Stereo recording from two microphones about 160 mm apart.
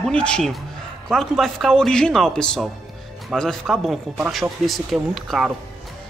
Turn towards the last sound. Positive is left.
turn(degrees=0)  # may be behind; listen again after turning